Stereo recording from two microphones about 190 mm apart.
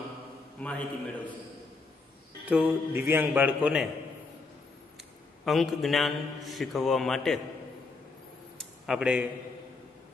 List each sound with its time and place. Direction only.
0.6 s a man's voice: 5° left (ahead or behind)
2.4 s a man's voice: 10° right (ahead or behind)
5.4 s a man's voice: centre (ahead or behind)
8.5 s a sound: centre (ahead or behind)